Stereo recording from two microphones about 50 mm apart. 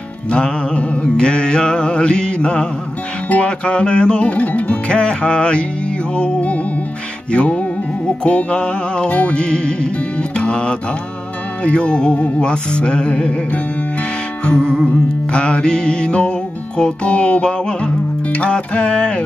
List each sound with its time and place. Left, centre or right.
0.3 s music: left
14.4 s music: centre